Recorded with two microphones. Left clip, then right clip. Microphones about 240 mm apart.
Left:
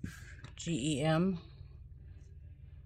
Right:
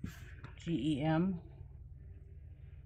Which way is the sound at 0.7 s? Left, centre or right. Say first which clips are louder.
Left 1 dB; left.